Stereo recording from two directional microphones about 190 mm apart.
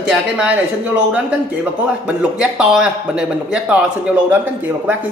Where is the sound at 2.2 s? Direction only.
5° right (ahead or behind).